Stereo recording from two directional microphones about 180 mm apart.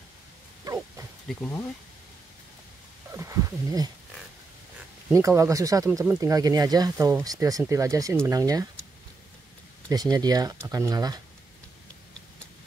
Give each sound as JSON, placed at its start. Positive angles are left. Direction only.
{"t": 1.3, "sound": "speech", "side_deg": 5}
{"t": 3.1, "sound": "speech", "side_deg": -15}
{"t": 5.1, "sound": "speech", "side_deg": -15}
{"t": 9.8, "sound": "speech", "side_deg": -20}